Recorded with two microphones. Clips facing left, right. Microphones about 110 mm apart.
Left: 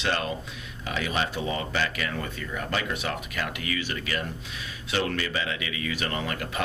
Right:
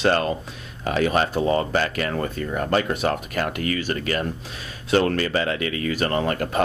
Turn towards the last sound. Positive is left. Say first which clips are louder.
# right 8 dB
turn(degrees=-40)  # may be behind; listen again after turning